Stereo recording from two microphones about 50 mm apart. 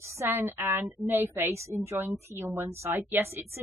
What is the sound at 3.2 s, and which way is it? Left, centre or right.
Speech, right.